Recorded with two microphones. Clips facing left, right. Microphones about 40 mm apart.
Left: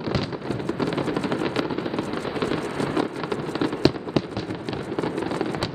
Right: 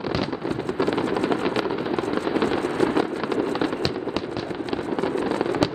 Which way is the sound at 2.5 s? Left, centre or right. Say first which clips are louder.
Right 5 dB; right.